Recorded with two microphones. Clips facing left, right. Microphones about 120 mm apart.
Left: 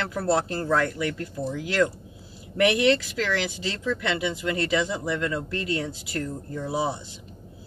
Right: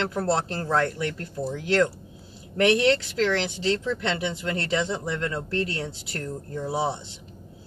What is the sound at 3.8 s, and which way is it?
Speech, 25° right (ahead or behind).